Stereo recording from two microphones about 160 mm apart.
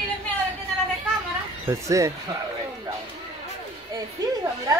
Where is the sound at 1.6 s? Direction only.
20° right (ahead or behind).